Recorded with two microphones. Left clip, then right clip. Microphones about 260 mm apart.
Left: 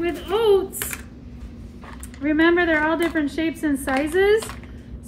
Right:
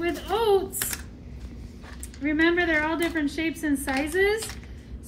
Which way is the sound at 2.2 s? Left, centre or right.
Centre.